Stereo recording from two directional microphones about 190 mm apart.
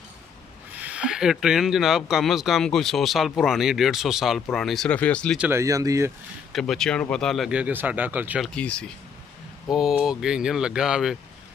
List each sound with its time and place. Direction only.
0.7 s speech: 5° right (ahead or behind)
5.4 s speech: 15° right (ahead or behind)
6.5 s speech: centre (ahead or behind)
8.5 s speech: 5° left (ahead or behind)